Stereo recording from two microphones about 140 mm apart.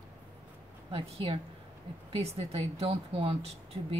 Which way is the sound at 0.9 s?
40° right (ahead or behind).